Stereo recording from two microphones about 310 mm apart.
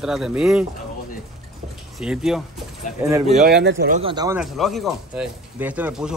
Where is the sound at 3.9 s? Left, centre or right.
Centre.